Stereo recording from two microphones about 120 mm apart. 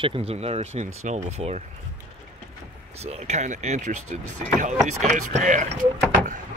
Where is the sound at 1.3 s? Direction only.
65° right (ahead or behind).